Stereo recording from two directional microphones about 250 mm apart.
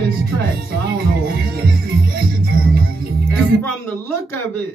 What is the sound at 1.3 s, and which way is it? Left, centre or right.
Music, right.